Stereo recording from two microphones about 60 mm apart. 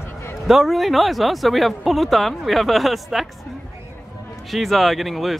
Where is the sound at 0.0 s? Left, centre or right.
Left.